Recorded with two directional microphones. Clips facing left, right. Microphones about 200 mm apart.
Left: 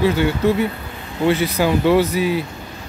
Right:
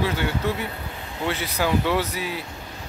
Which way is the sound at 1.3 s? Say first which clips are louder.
Left 7 dB; 10° left (ahead or behind).